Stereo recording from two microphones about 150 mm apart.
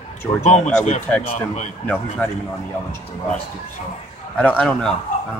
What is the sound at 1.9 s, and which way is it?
Speech, 10° left (ahead or behind).